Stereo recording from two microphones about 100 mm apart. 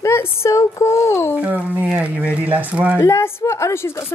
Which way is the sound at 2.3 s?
15° right (ahead or behind).